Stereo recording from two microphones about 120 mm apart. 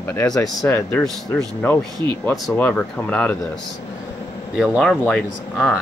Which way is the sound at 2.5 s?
15° left (ahead or behind).